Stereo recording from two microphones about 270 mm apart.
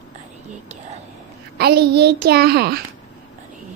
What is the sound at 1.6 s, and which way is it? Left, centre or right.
Speech, right.